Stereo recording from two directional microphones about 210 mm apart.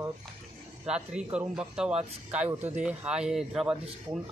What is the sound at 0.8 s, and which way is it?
Speech, 5° right (ahead or behind).